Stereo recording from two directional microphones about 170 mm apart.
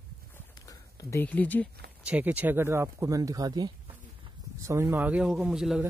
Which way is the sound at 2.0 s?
10° right (ahead or behind).